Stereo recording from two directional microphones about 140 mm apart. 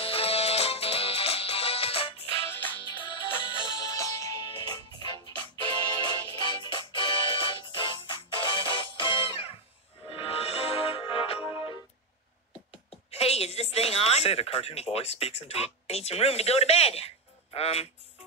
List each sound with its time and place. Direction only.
0.0 s music: 45° left (ahead or behind)
2.3 s music: 15° left (ahead or behind)
2.8 s music: 35° left (ahead or behind)
3.9 s music: 25° left (ahead or behind); by 11.7 s 40° left (ahead or behind)
13.1 s speech: 45° left (ahead or behind)